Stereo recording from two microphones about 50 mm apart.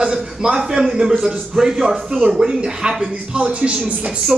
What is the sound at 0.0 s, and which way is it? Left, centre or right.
A man's voice, centre.